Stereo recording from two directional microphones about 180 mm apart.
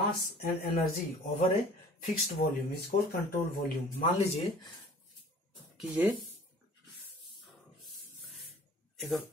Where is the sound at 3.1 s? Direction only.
55° left (ahead or behind).